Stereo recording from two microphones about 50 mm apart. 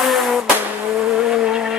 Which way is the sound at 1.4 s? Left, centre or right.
Centre.